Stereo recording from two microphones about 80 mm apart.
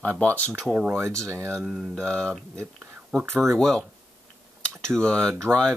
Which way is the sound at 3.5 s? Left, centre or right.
Centre.